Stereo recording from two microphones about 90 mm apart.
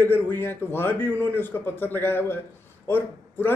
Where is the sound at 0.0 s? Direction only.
25° left (ahead or behind).